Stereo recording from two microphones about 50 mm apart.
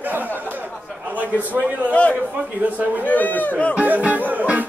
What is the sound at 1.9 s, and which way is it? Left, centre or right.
Speech, left.